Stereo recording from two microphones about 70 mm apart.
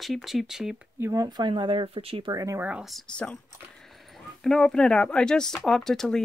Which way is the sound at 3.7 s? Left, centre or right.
Centre.